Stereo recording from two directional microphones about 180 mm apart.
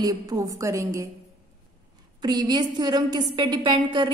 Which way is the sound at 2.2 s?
25° right (ahead or behind).